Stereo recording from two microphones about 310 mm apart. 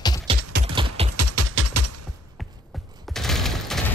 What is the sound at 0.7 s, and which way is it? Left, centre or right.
Typing, centre.